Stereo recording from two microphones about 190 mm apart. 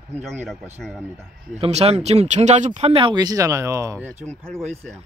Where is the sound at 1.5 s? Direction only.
30° right (ahead or behind); by 3.9 s 15° right (ahead or behind).